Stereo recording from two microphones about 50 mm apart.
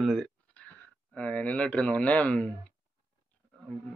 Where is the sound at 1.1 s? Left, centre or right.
Left.